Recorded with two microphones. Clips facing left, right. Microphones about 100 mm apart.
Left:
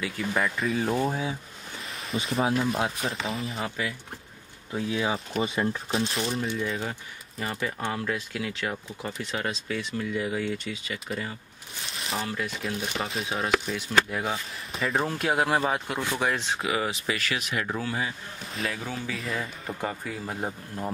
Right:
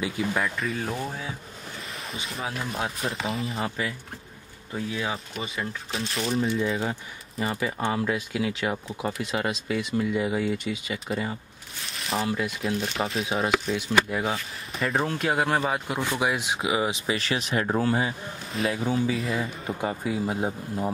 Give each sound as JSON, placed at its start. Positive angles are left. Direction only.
{"t": 0.3, "sound": "speech", "side_deg": 0}
{"t": 0.9, "sound": "speech", "side_deg": 25}
{"t": 2.1, "sound": "speech", "side_deg": 0}
{"t": 5.3, "sound": "speech", "side_deg": 35}
{"t": 5.9, "sound": "speech", "side_deg": 0}
{"t": 16.0, "sound": "speech", "side_deg": -10}
{"t": 19.1, "sound": "speech", "side_deg": 0}
{"t": 19.7, "sound": "speech", "side_deg": -15}